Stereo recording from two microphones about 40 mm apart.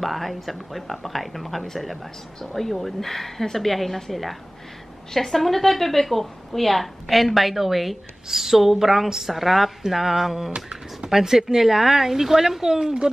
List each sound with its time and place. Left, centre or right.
0.0 s a woman's voice: centre
10.5 s a sound: right
11.1 s a woman's voice: centre